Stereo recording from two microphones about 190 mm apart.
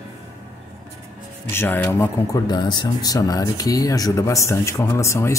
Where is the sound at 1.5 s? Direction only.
10° left (ahead or behind).